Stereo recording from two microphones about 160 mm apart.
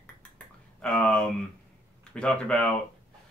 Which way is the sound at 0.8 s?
5° left (ahead or behind).